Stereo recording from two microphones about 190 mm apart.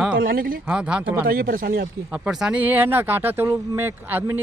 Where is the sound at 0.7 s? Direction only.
5° right (ahead or behind).